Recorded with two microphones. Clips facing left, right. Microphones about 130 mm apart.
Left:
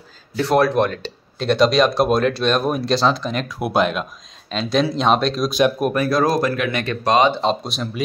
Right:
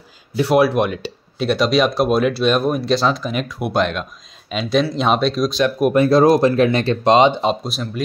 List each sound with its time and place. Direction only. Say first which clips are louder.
0.4 s speech: right 1 dB; 10° right (ahead or behind)
5.9 s speech: right 10 dB; 25° right (ahead or behind)
7.4 s speech: right 1 dB; centre (ahead or behind)